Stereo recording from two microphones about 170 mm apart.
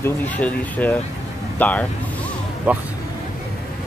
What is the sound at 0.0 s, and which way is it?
Speech, 10° left (ahead or behind).